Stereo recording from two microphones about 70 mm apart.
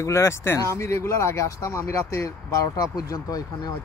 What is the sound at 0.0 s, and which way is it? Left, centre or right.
Speech, left.